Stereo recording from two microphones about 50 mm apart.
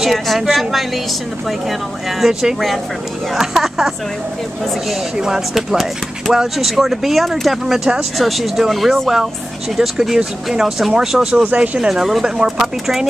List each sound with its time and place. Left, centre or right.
0.0 s speech: centre
3.3 s speech: centre
5.2 s speech: centre
11.5 s speech: right
11.9 s speech: centre